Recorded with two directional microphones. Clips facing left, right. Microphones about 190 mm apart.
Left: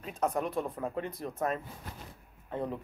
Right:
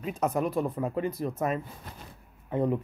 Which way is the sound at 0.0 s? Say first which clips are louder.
Right 4 dB; 5° right (ahead or behind).